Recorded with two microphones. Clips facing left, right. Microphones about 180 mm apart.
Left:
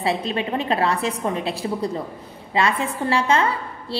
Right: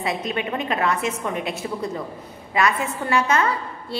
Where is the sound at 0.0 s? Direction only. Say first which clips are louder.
Left 2 dB; 30° left (ahead or behind).